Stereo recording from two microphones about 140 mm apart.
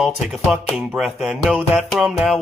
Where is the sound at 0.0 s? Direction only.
Centre (ahead or behind).